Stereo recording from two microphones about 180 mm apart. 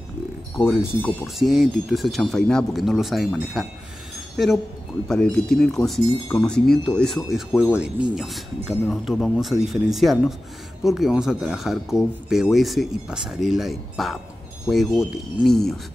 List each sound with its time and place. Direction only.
0.6 s speech: 5° left (ahead or behind)
5.0 s speech: 5° left (ahead or behind)